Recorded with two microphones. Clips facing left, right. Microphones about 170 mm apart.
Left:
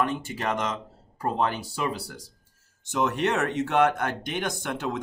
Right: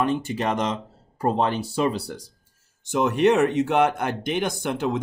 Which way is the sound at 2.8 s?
15° right (ahead or behind).